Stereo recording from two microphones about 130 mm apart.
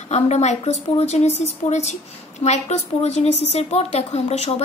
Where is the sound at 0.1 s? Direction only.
60° left (ahead or behind).